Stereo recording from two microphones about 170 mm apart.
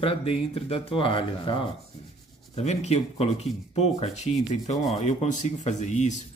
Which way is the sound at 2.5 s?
40° left (ahead or behind).